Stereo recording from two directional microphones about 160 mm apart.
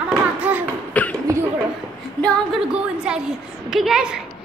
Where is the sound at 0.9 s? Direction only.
10° left (ahead or behind).